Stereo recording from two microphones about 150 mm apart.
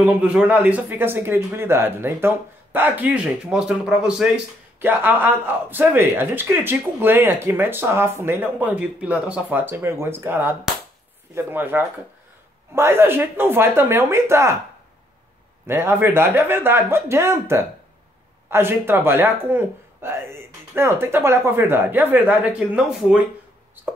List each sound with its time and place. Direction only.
0.0 s speech: 10° right (ahead or behind)
15.6 s speech: 15° right (ahead or behind)